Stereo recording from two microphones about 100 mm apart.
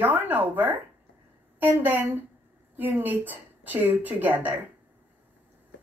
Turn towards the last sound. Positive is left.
turn(degrees=-15)  # may be behind; listen again after turning